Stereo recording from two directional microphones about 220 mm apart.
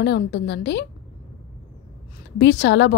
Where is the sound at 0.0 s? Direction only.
50° left (ahead or behind).